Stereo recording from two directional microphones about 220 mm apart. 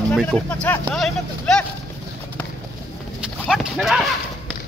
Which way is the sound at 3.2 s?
Centre (ahead or behind).